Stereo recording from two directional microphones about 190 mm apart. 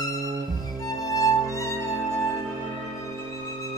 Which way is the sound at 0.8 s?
15° left (ahead or behind).